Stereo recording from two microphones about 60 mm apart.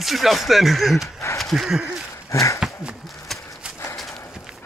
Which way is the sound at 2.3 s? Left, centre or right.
Left.